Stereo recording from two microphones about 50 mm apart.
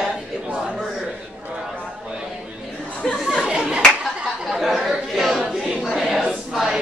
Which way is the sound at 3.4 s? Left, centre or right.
Centre.